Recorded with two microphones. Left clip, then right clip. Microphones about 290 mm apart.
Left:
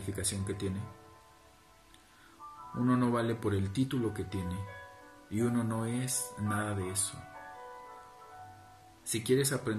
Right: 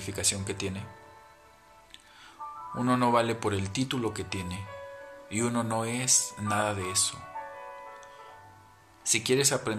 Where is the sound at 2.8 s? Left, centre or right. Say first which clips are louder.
Right 6 dB; centre.